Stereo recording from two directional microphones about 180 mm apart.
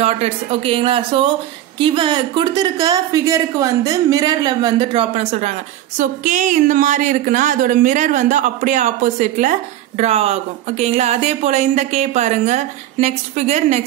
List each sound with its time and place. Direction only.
0.0 s a woman's voice: 35° right (ahead or behind)